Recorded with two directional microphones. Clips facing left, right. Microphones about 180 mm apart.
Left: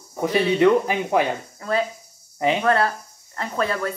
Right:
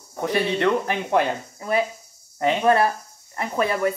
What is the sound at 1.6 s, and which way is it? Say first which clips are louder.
Speech: right 1 dB; 15° right (ahead or behind).